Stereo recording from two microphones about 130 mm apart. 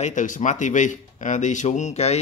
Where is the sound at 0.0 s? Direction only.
75° left (ahead or behind).